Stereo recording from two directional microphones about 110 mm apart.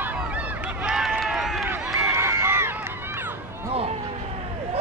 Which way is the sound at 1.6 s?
25° right (ahead or behind).